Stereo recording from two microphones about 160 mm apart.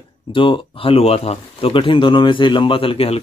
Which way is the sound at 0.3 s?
30° left (ahead or behind).